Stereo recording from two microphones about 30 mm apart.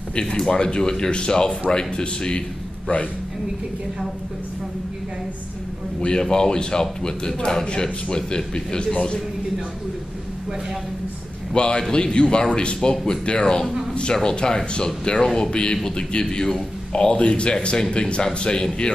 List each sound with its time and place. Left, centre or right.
0.1 s speech: left
5.9 s speech: left
11.5 s a man's voice: left
15.5 s speech: left
16.3 s speech: centre
16.9 s speech: left